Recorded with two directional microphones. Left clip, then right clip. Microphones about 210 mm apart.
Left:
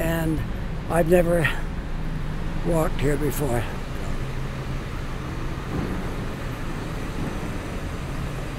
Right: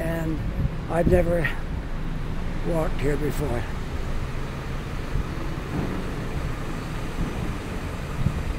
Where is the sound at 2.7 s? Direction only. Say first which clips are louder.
Left 3 dB; 15° left (ahead or behind).